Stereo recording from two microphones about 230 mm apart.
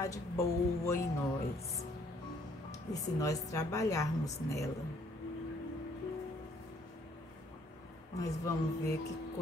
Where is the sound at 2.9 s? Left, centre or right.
Centre.